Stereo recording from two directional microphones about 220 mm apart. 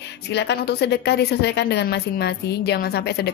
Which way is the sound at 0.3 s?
50° left (ahead or behind).